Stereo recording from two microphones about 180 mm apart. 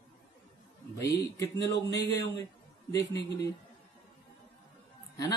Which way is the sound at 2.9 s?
20° left (ahead or behind).